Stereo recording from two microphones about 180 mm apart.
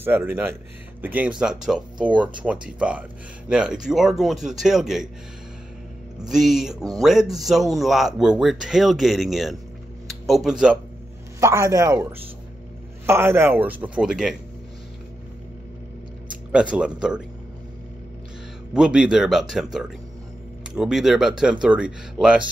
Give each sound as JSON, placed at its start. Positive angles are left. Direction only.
{"t": 0.0, "sound": "a man's voice", "side_deg": -10}
{"t": 6.2, "sound": "speech", "side_deg": 0}
{"t": 11.3, "sound": "a man's voice", "side_deg": -15}
{"t": 16.5, "sound": "speech", "side_deg": -5}
{"t": 18.7, "sound": "speech", "side_deg": -5}